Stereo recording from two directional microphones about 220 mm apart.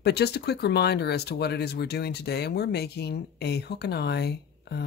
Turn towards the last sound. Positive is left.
turn(degrees=50)  # may be behind; listen again after turning